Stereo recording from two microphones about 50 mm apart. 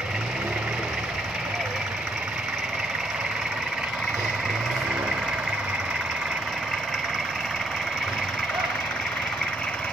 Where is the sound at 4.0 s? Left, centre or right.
Centre.